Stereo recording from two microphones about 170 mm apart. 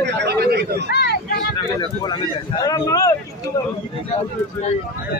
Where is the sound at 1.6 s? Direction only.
25° left (ahead or behind).